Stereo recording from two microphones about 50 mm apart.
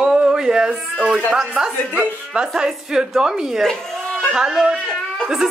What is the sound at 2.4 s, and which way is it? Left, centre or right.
A woman's voice, centre.